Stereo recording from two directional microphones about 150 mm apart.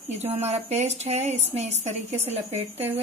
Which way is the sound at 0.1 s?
45° right (ahead or behind).